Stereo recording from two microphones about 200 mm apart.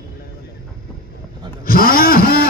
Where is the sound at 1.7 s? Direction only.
45° left (ahead or behind).